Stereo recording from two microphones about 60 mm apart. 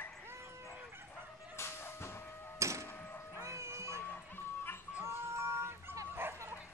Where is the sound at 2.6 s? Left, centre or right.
Right.